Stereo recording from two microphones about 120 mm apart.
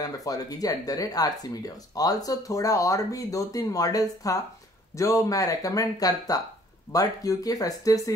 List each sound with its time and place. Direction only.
0.0 s speech: 30° left (ahead or behind)